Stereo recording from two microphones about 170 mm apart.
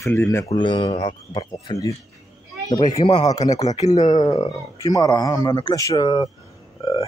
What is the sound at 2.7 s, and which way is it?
Speech, 35° left (ahead or behind).